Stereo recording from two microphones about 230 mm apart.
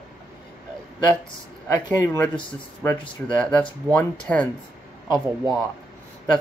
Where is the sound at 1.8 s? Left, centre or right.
Centre.